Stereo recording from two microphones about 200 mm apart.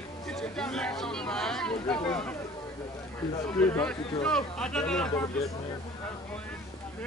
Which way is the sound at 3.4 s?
10° left (ahead or behind).